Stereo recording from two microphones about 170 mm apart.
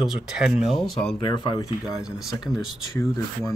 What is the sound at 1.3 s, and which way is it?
Speech, 25° left (ahead or behind).